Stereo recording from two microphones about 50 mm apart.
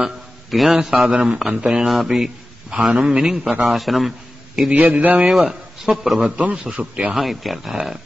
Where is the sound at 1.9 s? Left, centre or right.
Centre.